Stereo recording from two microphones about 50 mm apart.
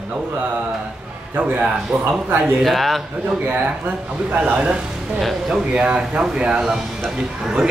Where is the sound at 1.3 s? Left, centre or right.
Right.